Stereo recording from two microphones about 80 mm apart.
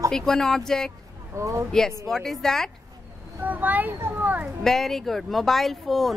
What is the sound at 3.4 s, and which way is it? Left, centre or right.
A child's voice, right.